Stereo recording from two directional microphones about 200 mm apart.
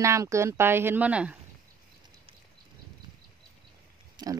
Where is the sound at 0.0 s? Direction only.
15° right (ahead or behind).